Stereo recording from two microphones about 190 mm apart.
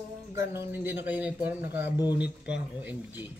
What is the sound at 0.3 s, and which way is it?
Speech, 15° right (ahead or behind).